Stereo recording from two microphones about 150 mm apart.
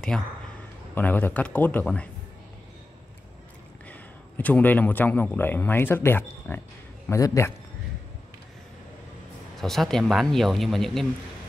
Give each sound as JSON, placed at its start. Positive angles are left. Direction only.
{"t": 0.1, "sound": "speech", "side_deg": 5}
{"t": 3.9, "sound": "a man's voice", "side_deg": 10}
{"t": 9.6, "sound": "speech", "side_deg": 0}